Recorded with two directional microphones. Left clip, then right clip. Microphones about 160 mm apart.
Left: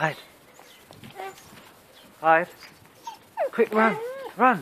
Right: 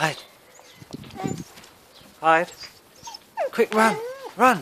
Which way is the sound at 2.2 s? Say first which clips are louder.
Right 1 dB; 50° right (ahead or behind).